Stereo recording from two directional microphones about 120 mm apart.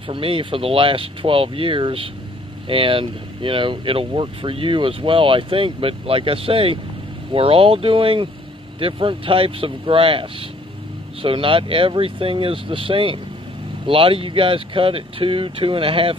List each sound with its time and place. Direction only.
0.1 s speech: 50° right (ahead or behind)